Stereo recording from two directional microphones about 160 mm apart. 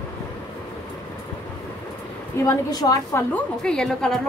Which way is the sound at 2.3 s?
20° left (ahead or behind).